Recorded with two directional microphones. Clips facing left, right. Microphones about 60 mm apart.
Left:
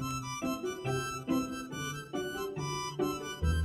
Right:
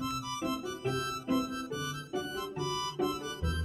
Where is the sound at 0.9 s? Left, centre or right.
Left.